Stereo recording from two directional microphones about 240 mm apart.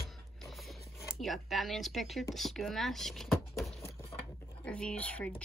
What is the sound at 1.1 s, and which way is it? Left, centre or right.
A woman's voice, centre.